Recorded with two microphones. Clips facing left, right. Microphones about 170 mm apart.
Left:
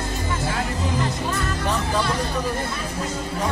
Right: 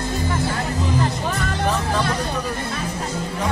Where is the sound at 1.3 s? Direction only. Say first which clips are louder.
Right 2 dB; 70° right (ahead or behind).